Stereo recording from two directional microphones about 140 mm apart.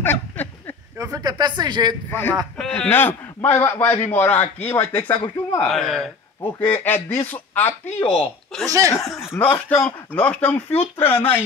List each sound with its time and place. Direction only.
0.0 s a sound: 15° left (ahead or behind)
0.9 s speech: 25° right (ahead or behind)
2.0 s a man's voice: 15° left (ahead or behind)
4.9 s speech: 30° left (ahead or behind)
5.7 s speech: 5° left (ahead or behind)
6.4 s a man's voice: 15° left (ahead or behind)
8.6 s speech: 20° right (ahead or behind)
9.4 s a man's voice: 10° left (ahead or behind)